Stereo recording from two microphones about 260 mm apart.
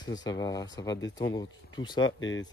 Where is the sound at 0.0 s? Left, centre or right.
Centre.